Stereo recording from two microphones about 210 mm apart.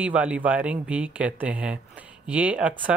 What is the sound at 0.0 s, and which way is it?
Speech, 5° right (ahead or behind).